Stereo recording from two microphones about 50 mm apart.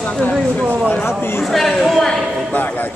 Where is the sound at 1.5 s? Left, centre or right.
Centre.